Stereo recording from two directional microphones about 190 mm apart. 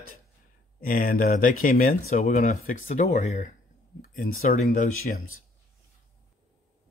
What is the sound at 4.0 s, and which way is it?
Speech, 45° left (ahead or behind).